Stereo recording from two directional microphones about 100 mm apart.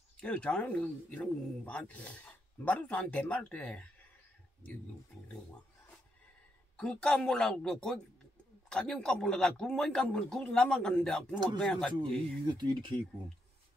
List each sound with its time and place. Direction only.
0.2 s speech: 10° left (ahead or behind)
6.8 s speech: 5° left (ahead or behind)
12.4 s speech: 50° right (ahead or behind)